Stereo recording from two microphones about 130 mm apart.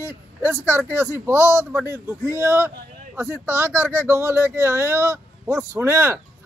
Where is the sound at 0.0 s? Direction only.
20° right (ahead or behind).